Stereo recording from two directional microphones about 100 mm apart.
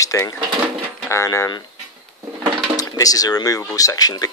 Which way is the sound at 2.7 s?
40° left (ahead or behind).